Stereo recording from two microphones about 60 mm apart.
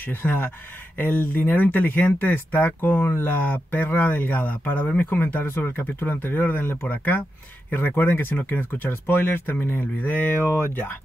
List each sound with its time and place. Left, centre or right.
0.0 s speech: left